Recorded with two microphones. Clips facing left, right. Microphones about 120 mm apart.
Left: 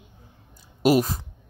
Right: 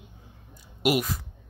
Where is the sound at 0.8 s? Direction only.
35° left (ahead or behind).